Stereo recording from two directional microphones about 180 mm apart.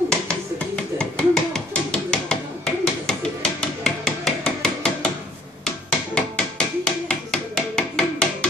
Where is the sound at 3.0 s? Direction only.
5° left (ahead or behind).